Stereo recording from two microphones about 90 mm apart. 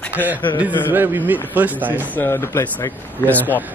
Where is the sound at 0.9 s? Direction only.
25° right (ahead or behind).